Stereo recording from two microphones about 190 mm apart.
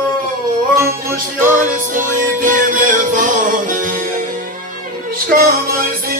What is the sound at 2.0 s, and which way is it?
Music, 45° right (ahead or behind).